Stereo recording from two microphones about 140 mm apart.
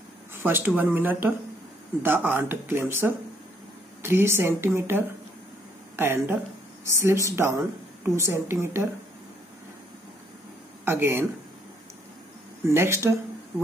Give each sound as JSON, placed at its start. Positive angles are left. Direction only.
{"t": 0.3, "sound": "speech", "side_deg": -15}
{"t": 10.9, "sound": "speech", "side_deg": -15}
{"t": 12.6, "sound": "speech", "side_deg": -20}